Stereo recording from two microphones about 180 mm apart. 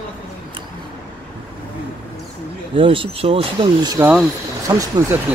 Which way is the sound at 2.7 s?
30° right (ahead or behind).